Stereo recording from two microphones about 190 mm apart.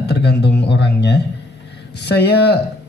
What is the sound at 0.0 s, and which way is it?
Speech, 65° left (ahead or behind).